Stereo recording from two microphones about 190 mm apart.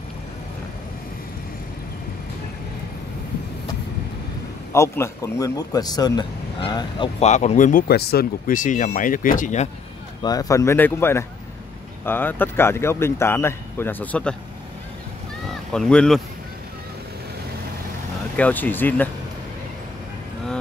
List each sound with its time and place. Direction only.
4.7 s speech: 15° left (ahead or behind)
7.2 s speech: 35° left (ahead or behind)
10.2 s speech: 20° left (ahead or behind)
15.7 s speech: 5° left (ahead or behind)
18.3 s speech: 10° left (ahead or behind)